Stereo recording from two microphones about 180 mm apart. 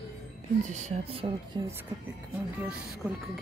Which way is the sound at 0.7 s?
40° right (ahead or behind).